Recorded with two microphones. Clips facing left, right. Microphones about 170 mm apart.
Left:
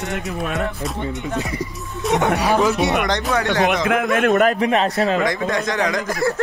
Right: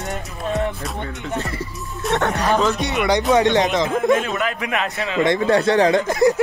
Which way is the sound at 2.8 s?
60° left (ahead or behind).